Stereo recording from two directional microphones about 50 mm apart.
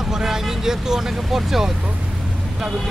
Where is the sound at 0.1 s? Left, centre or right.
Centre.